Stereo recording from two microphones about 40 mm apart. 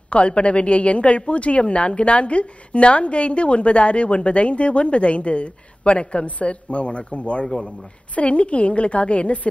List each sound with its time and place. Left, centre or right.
0.1 s a woman's voice: left